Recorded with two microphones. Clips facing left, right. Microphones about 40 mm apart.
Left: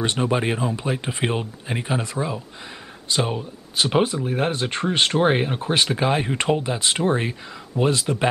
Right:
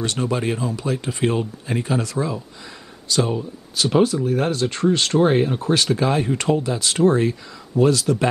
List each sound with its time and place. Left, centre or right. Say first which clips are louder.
0.0 s speech: left 1 dB; left